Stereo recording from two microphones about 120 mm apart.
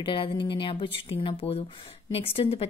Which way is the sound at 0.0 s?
45° left (ahead or behind).